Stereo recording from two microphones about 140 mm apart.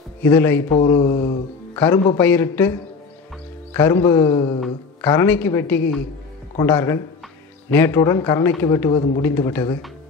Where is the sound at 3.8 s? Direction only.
15° left (ahead or behind).